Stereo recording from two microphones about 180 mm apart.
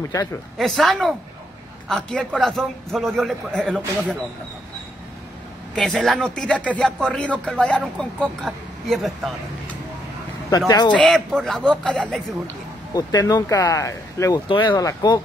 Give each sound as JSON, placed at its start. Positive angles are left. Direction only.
{"t": 0.6, "sound": "speech", "side_deg": 0}
{"t": 5.8, "sound": "speech", "side_deg": 5}
{"t": 10.9, "sound": "speech", "side_deg": 5}
{"t": 12.9, "sound": "speech", "side_deg": 20}